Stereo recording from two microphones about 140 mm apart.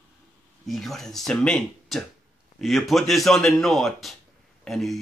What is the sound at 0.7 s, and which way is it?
Speech, centre (ahead or behind).